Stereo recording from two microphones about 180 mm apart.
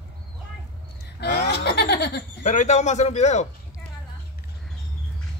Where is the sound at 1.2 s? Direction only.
70° left (ahead or behind).